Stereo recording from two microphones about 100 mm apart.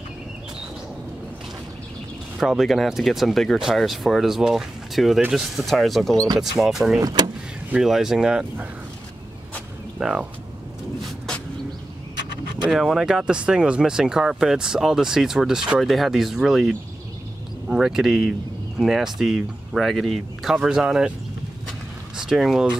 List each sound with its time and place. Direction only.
2.3 s speech: centre (ahead or behind)
7.0 s speech: 40° right (ahead or behind)
7.7 s speech: 5° right (ahead or behind)
9.9 s speech: 5° right (ahead or behind)
12.6 s speech: 5° right (ahead or behind)
22.1 s speech: 5° right (ahead or behind)